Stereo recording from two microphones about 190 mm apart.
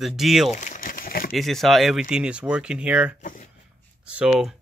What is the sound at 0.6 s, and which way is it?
Crumpling, 45° left (ahead or behind).